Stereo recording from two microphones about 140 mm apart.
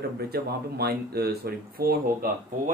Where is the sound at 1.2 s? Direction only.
90° right.